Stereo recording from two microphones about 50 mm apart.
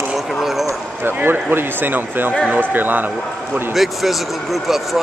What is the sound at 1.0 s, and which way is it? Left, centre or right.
Speech, right.